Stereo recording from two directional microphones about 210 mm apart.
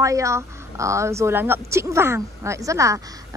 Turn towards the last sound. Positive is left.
turn(degrees=-15)  # may be behind; listen again after turning